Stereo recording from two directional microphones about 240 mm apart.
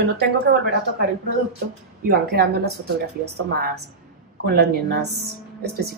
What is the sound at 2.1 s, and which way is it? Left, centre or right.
A woman's voice, right.